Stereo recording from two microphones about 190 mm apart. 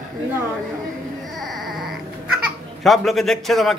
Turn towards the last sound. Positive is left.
turn(degrees=0)  # may be behind; listen again after turning